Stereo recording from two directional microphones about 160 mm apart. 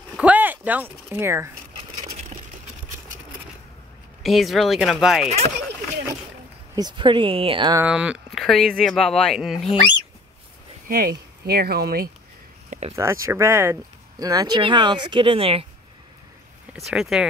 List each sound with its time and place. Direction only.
0.2 s speech: 10° right (ahead or behind)
4.2 s speech: centre (ahead or behind)
6.7 s speech: 25° right (ahead or behind)
7.8 s speech: 5° right (ahead or behind)
10.9 s speech: 70° right (ahead or behind)
12.9 s speech: 20° right (ahead or behind); by 15.6 s 35° right (ahead or behind)
16.9 s speech: 5° right (ahead or behind)